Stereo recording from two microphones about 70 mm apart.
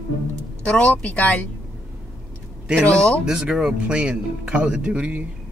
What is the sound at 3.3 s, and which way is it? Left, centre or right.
Speech, centre.